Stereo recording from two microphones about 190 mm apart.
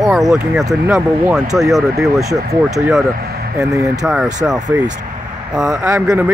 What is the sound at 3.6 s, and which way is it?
Speech, 15° right (ahead or behind).